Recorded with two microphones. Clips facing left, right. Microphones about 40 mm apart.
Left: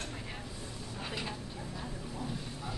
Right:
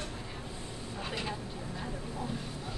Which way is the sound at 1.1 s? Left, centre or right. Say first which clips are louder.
Right 3 dB; centre.